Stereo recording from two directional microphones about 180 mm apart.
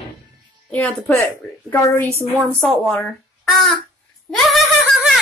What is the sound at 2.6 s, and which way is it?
Speech, 5° left (ahead or behind).